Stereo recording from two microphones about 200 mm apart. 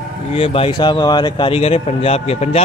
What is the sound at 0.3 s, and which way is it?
Speech, 30° left (ahead or behind).